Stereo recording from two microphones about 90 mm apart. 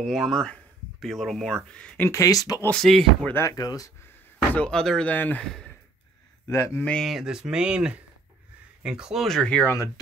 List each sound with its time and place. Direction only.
0.0 s speech: centre (ahead or behind)
2.0 s speech: 35° left (ahead or behind)
2.7 s speech: 5° left (ahead or behind)
3.3 s speech: 40° left (ahead or behind)
4.6 s speech: 5° left (ahead or behind)
5.4 s speech: 5° left (ahead or behind)
6.4 s speech: 35° left (ahead or behind)
6.8 s speech: 10° left (ahead or behind)
7.1 s speech: 5° right (ahead or behind); by 9.7 s 10° left (ahead or behind)